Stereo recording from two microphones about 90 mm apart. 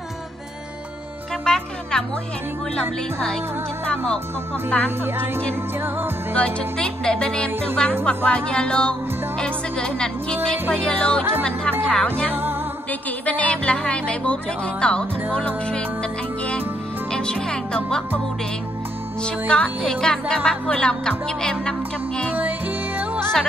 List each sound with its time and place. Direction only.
1.4 s speech: 10° left (ahead or behind)
2.7 s music: 10° left (ahead or behind)
5.0 s music: 25° right (ahead or behind)
6.3 s music: 10° left (ahead or behind)
12.3 s music: 25° right (ahead or behind)
13.2 s music: 15° left (ahead or behind)
19.2 s music: 10° left (ahead or behind)
22.9 s music: 20° right (ahead or behind)